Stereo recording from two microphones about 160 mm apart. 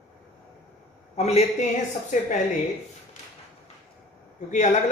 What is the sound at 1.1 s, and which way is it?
A woman's voice, 40° left (ahead or behind).